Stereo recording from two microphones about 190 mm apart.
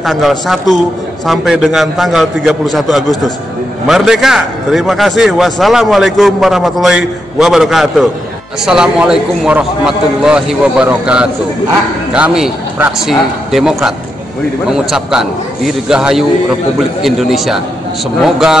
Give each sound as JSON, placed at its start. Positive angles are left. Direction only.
{"t": 0.0, "sound": "a man's voice", "side_deg": 0}